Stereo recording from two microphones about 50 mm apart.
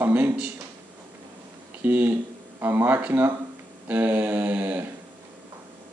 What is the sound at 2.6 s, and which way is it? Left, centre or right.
Mantra, right.